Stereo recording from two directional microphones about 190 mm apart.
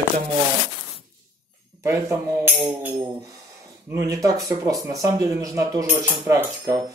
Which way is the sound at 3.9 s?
20° right (ahead or behind).